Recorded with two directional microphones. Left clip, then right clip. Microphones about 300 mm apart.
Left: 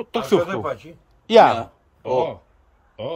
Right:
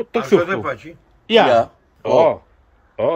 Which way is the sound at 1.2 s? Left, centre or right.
Centre.